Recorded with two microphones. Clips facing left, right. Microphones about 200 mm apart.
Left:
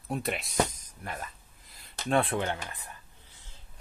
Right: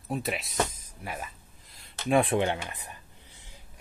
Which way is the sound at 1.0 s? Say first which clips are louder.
Right 1 dB; 5° right (ahead or behind).